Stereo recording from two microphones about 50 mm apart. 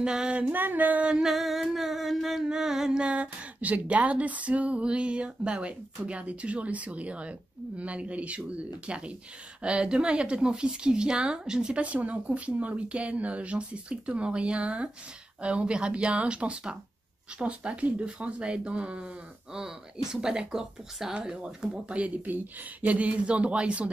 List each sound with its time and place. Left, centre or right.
0.0 s speech: centre
0.5 s music: right
1.2 s a sound: centre
2.4 s speech: centre
19.5 s speech: centre